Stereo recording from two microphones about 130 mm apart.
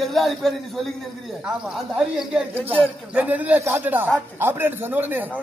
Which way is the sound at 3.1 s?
10° right (ahead or behind).